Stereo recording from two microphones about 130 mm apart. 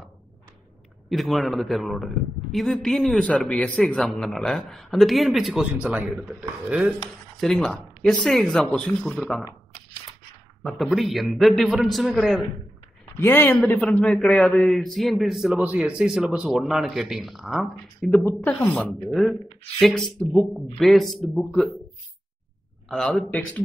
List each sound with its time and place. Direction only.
1.0 s speech: centre (ahead or behind)
7.3 s speech: centre (ahead or behind)
10.6 s speech: centre (ahead or behind)
13.2 s speech: 15° left (ahead or behind)
18.2 s speech: 15° left (ahead or behind)
22.8 s speech: 5° left (ahead or behind)